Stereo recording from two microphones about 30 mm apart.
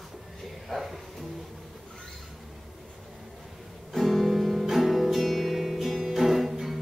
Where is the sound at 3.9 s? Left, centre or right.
Centre.